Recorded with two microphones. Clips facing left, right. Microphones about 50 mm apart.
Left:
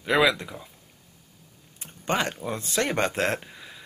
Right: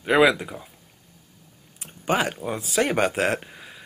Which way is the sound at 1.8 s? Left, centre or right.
Centre.